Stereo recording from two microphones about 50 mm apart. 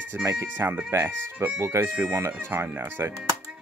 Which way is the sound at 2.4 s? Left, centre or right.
Right.